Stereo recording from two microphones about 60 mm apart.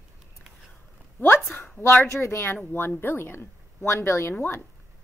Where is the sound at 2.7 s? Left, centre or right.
Left.